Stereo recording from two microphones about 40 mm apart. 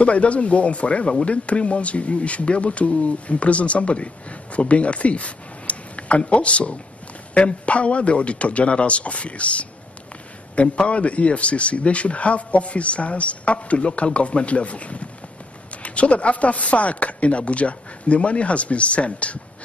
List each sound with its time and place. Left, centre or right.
0.0 s speech: left